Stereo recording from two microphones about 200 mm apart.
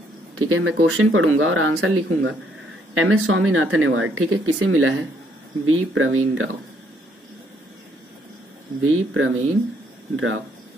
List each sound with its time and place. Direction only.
0.4 s speech: 90° right
2.9 s speech: 90° right
8.8 s speech: 90° right